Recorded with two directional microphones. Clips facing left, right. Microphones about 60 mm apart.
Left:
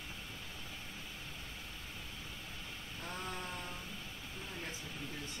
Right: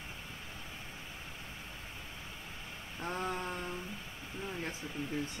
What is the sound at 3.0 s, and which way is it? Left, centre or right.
Mantra, right.